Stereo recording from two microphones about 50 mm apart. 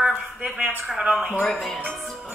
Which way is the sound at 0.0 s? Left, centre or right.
Right.